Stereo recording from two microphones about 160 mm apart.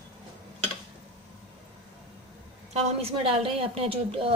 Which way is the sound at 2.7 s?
40° right (ahead or behind).